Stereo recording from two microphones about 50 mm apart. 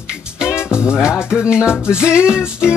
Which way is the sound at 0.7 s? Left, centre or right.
Centre.